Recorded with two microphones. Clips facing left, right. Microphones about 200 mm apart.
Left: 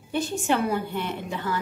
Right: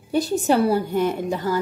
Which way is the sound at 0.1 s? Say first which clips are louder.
Right 6 dB; 40° right (ahead or behind).